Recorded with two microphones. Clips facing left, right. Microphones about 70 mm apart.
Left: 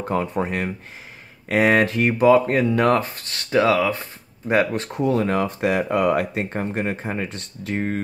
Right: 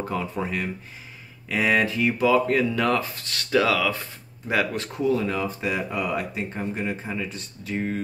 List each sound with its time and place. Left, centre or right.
0.0 s speech: left